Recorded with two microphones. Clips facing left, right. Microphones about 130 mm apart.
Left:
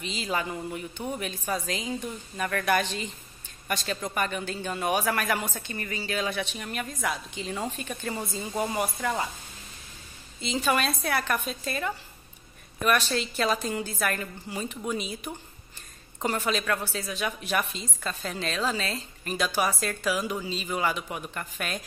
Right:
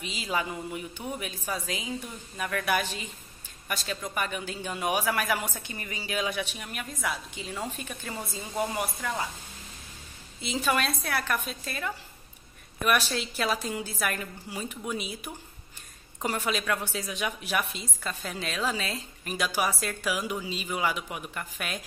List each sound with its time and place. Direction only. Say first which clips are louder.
0.0 s a man's voice: left 1 dB; 10° right (ahead or behind)
10.7 s a woman's voice: left 2 dB; centre (ahead or behind)